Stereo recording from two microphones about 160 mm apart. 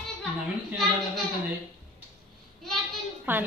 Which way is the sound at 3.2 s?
10° right (ahead or behind).